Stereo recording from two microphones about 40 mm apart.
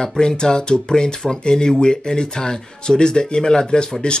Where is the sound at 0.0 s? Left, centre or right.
Centre.